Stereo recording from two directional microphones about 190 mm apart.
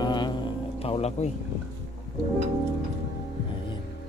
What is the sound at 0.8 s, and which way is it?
Music, 30° left (ahead or behind).